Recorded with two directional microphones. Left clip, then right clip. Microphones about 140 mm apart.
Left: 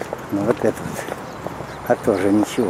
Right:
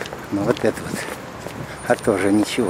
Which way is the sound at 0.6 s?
15° right (ahead or behind).